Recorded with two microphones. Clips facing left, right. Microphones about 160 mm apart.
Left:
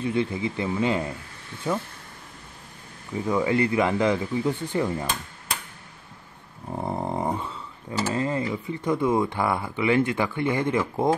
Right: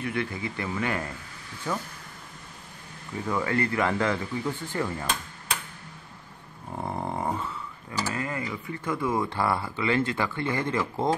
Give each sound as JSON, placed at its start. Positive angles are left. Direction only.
{"t": 0.0, "sound": "speech", "side_deg": 20}
{"t": 3.3, "sound": "speech", "side_deg": 15}
{"t": 6.7, "sound": "a sound", "side_deg": 15}